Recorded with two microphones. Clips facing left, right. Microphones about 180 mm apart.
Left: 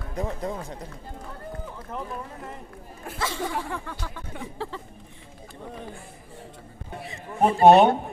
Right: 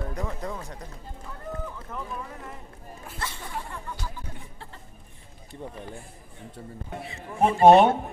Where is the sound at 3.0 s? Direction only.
75° left (ahead or behind); by 4.8 s 90° left.